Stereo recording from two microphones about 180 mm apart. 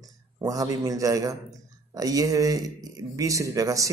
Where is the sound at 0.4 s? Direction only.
20° right (ahead or behind).